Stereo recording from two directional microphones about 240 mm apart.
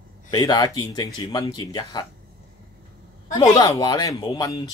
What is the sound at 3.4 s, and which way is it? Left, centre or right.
Speech, centre.